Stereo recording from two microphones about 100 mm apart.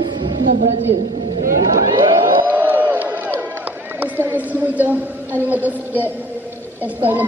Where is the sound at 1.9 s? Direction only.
45° right (ahead or behind).